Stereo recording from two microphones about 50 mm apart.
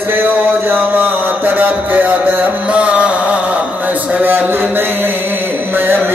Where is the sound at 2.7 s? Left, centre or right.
Right.